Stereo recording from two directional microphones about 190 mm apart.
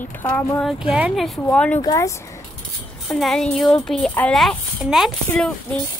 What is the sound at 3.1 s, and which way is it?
A woman's voice, centre (ahead or behind).